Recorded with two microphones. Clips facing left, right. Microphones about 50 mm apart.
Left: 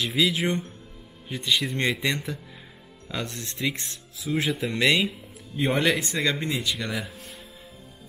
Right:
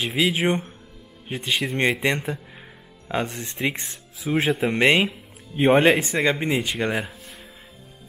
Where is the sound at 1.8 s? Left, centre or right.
Right.